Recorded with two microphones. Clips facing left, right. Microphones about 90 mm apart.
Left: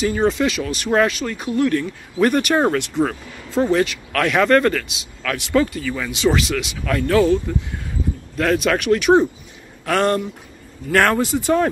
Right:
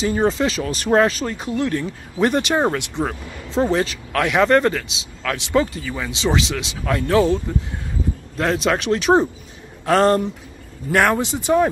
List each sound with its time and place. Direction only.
0.0 s speech: 25° right (ahead or behind)
8.4 s speech: 25° right (ahead or behind)
10.9 s speech: 15° right (ahead or behind)